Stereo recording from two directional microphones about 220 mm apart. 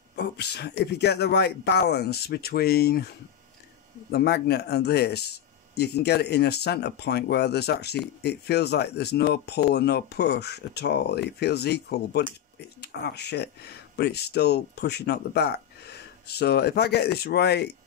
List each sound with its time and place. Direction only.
0.1 s speech: 50° left (ahead or behind)
4.1 s speech: 50° left (ahead or behind)